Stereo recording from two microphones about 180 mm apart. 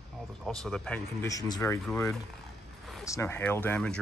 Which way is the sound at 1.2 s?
20° left (ahead or behind).